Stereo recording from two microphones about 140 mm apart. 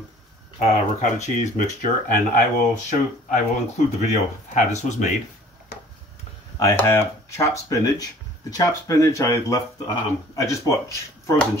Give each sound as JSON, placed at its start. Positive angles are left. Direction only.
{"t": 0.6, "sound": "speech", "side_deg": 50}
{"t": 6.6, "sound": "speech", "side_deg": 20}